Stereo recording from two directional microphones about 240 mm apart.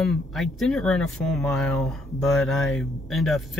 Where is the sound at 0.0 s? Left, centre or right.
Centre.